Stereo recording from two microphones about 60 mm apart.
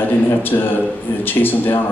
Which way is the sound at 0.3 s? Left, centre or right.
Left.